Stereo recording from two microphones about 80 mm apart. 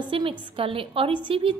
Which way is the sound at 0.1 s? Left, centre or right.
Right.